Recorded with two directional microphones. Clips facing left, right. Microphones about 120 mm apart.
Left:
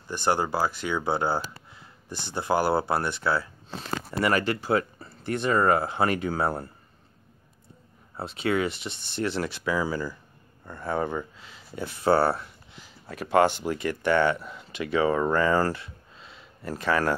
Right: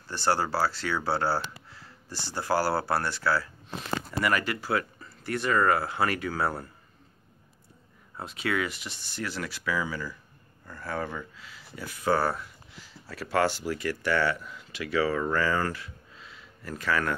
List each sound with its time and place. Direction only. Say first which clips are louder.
0.1 s speech: left 1 dB; 20° left (ahead or behind)
8.2 s speech: left 4 dB; 25° left (ahead or behind)
12.8 s speech: left 3 dB; 20° left (ahead or behind)